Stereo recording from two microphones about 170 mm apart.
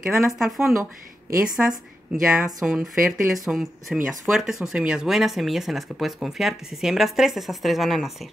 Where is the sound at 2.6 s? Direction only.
5° right (ahead or behind).